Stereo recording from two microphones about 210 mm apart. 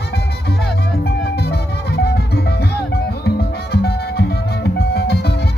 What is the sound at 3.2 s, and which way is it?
Music, 50° left (ahead or behind).